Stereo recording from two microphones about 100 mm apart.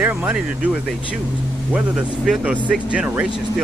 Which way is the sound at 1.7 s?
5° right (ahead or behind).